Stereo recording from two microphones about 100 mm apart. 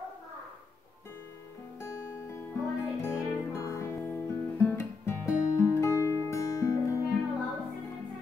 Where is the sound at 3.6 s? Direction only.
30° left (ahead or behind).